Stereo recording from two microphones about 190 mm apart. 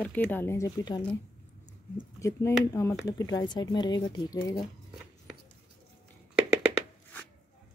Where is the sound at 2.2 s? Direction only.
15° left (ahead or behind).